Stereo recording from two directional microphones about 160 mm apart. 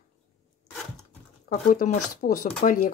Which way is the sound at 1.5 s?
50° left (ahead or behind).